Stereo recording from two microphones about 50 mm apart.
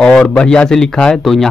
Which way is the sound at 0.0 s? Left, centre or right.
Left.